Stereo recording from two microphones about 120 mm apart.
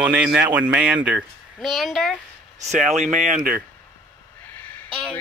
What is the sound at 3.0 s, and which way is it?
Speech, 90° right.